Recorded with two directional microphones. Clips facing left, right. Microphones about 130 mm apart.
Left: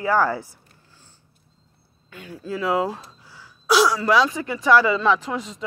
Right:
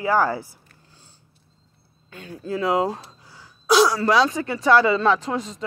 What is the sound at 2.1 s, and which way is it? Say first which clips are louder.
Speech: right 2 dB; 30° right (ahead or behind).